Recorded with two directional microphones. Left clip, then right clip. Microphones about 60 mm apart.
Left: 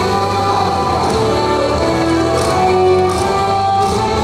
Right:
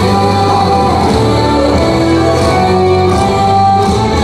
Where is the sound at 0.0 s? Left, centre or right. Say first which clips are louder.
Right 4 dB; right.